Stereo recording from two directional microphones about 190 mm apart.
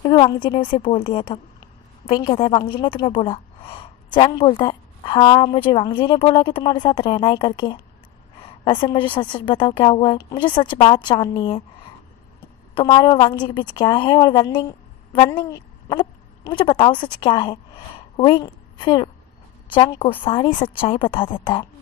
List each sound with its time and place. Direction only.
0.0 s a woman's voice: 25° left (ahead or behind)